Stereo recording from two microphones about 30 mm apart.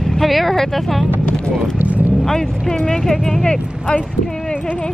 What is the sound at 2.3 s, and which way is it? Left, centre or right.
Speech, centre.